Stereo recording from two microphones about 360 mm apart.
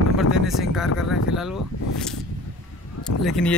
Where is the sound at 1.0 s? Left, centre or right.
Left.